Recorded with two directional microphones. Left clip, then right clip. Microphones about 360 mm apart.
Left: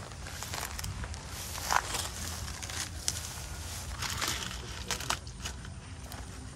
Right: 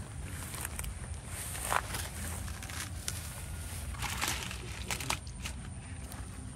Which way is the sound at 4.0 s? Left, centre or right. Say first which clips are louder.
Left 1 dB; centre.